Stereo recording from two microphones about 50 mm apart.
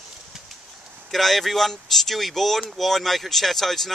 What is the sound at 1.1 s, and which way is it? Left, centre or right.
Speech, centre.